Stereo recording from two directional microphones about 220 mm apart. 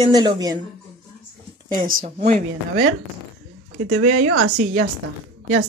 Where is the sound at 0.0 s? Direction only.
20° right (ahead or behind).